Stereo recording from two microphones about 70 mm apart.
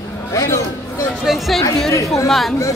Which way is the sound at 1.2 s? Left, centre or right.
Centre.